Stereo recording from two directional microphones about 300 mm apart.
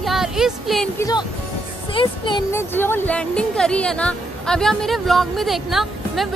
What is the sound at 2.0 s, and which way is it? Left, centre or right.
Speech, centre.